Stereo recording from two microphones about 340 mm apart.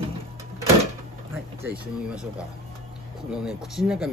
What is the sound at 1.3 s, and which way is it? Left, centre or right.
Speech, centre.